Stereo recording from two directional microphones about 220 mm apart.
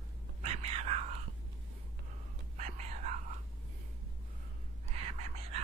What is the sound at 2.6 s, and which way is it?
Whispering, 30° right (ahead or behind).